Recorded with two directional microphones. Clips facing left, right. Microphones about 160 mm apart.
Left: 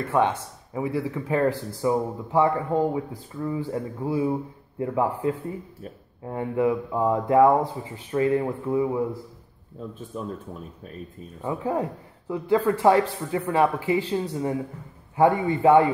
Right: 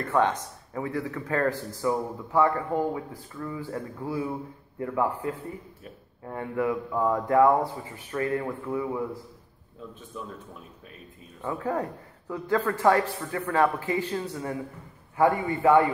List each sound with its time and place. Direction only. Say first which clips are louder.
0.1 s a man's voice: left 1 dB; 15° left (ahead or behind)
10.1 s speech: left 6 dB; 40° left (ahead or behind)
11.4 s a man's voice: left 3 dB; 15° left (ahead or behind)